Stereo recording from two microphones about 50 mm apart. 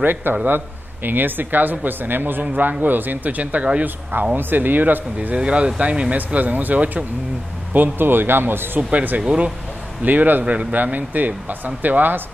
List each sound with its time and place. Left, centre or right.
0.0 s speech: right
4.4 s speech: right
5.3 s speech: right
8.9 s speech: right
10.4 s speech: right